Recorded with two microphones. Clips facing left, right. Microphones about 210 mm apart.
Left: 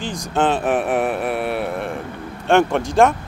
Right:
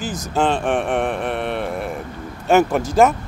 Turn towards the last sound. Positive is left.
turn(degrees=-5)  # may be behind; listen again after turning